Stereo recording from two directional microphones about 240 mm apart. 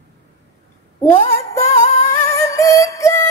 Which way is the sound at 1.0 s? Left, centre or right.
Left.